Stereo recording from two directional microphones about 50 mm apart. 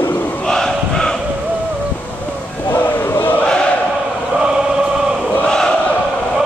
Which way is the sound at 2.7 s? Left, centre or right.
Left.